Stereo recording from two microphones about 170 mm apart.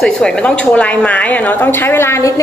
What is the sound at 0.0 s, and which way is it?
A woman's voice, 5° left (ahead or behind).